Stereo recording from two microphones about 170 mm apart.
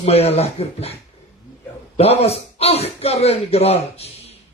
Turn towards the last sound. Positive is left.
turn(degrees=35)  # may be behind; listen again after turning